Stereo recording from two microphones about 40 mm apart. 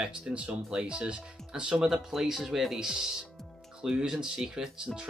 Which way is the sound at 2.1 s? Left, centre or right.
Centre.